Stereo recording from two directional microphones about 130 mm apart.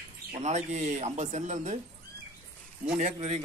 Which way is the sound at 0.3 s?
65° right (ahead or behind).